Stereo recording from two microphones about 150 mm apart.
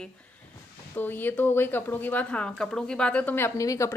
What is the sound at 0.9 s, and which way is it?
Speech, 10° left (ahead or behind).